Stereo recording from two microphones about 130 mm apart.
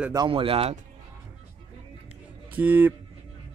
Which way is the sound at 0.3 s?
45° right (ahead or behind).